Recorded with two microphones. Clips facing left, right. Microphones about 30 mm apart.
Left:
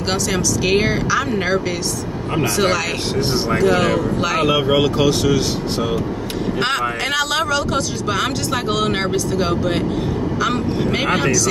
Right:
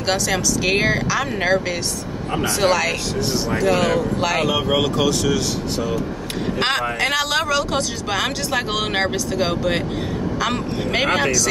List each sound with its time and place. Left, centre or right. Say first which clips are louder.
0.1 s speech: even; centre
4.5 s speech: left 3 dB; centre
6.6 s speech: right 1 dB; centre